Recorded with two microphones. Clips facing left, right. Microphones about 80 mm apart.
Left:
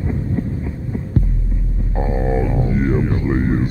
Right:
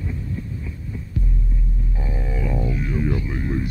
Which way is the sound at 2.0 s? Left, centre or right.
Left.